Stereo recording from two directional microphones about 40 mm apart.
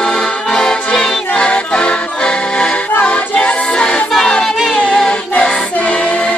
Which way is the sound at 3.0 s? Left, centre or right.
Left.